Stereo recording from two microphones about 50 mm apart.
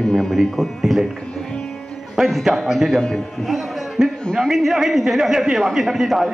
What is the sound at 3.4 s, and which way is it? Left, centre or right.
Music, centre.